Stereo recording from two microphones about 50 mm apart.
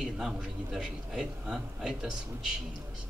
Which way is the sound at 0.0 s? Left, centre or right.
Centre.